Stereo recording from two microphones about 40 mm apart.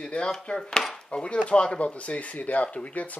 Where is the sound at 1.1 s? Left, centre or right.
Left.